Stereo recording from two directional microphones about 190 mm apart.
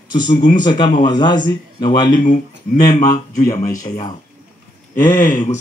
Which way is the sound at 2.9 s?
40° left (ahead or behind).